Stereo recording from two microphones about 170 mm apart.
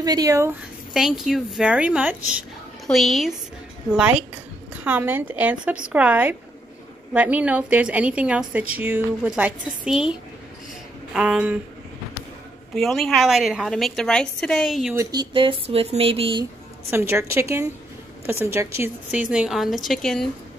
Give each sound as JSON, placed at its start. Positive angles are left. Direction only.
{"t": 0.0, "sound": "speech", "side_deg": -20}
{"t": 0.9, "sound": "a woman's voice", "side_deg": 0}
{"t": 4.8, "sound": "a woman's voice", "side_deg": -10}
{"t": 11.1, "sound": "a woman's voice", "side_deg": -5}
{"t": 12.7, "sound": "a woman's voice", "side_deg": 0}
{"t": 15.0, "sound": "speech", "side_deg": -25}
{"t": 16.9, "sound": "a woman's voice", "side_deg": -15}